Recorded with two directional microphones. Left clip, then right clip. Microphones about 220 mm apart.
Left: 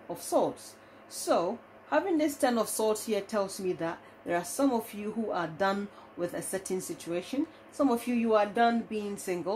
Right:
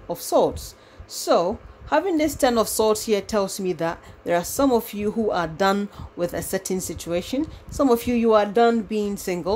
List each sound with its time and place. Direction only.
0.1 s a woman's voice: 40° right (ahead or behind)